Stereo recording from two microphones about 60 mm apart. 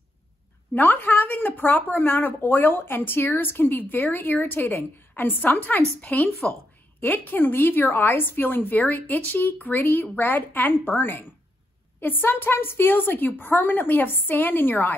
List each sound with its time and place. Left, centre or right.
0.7 s a woman's voice: left